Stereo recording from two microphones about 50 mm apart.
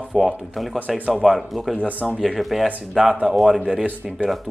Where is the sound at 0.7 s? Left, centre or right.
Right.